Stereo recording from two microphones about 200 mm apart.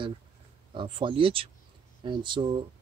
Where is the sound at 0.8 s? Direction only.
25° right (ahead or behind).